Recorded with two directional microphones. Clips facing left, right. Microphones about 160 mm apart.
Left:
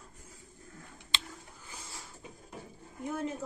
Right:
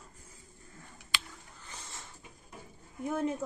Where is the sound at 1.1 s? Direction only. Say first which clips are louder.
Right 1 dB; 25° left (ahead or behind).